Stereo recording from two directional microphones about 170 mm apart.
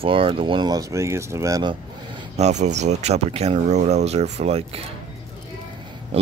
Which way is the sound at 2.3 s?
40° right (ahead or behind).